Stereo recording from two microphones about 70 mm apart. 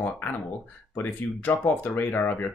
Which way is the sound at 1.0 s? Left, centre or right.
Left.